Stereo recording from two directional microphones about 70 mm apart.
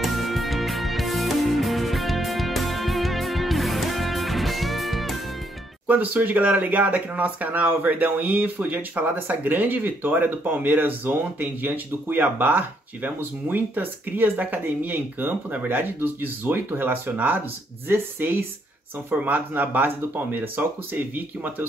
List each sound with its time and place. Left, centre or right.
0.0 s music: centre
5.9 s speech: right